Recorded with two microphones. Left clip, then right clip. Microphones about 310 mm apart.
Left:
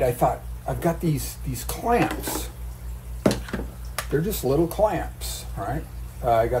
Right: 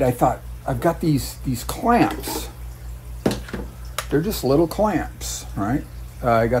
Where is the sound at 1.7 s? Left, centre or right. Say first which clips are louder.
Right 4 dB; right.